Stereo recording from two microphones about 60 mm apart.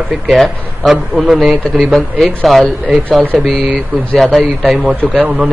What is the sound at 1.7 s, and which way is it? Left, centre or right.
A man's voice, centre.